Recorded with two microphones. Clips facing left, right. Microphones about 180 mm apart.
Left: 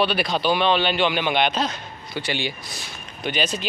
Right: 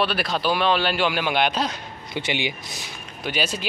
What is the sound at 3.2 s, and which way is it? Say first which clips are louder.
Speech: left 1 dB; 5° right (ahead or behind).